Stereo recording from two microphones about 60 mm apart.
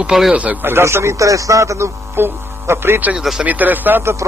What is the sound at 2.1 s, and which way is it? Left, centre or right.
Speech, right.